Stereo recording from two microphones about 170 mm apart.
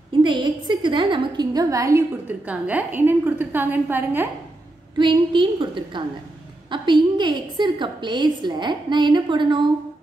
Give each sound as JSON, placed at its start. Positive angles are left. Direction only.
{"t": 0.2, "sound": "a woman's voice", "side_deg": -25}
{"t": 4.9, "sound": "a woman's voice", "side_deg": -30}